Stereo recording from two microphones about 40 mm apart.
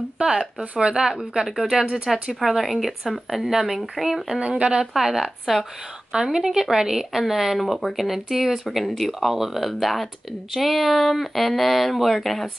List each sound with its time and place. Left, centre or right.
0.2 s a woman's voice: right
2.1 s speech: centre
4.4 s speech: right
4.7 s speech: centre
6.1 s a woman's voice: centre
7.5 s speech: centre